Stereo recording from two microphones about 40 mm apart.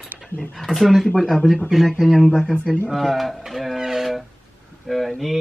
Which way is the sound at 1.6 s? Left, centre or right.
Centre.